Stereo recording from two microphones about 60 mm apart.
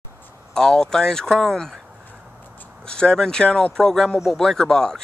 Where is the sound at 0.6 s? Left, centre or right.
Centre.